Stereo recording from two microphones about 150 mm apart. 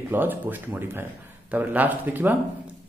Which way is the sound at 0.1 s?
15° right (ahead or behind).